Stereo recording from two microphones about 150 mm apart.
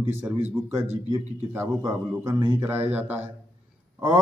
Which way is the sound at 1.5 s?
15° right (ahead or behind).